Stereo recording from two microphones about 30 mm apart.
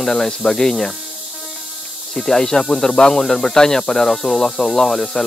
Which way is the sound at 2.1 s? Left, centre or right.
Centre.